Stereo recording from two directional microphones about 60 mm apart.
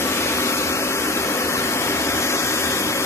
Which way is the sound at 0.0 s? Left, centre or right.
Left.